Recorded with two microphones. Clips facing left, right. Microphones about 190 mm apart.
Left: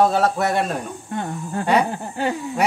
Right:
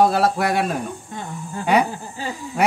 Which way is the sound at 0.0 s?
5° right (ahead or behind).